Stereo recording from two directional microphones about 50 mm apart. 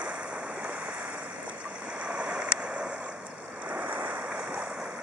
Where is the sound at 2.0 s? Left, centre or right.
Right.